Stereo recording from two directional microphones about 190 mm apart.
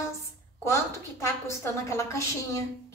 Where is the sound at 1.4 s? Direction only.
15° left (ahead or behind).